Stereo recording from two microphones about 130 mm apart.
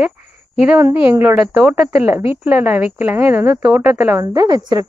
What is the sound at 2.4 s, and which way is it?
A woman's voice, 15° right (ahead or behind).